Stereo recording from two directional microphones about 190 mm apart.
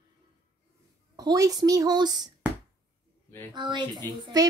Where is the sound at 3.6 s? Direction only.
25° right (ahead or behind).